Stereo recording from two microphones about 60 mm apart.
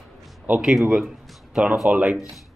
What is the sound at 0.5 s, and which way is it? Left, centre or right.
A man's voice, centre.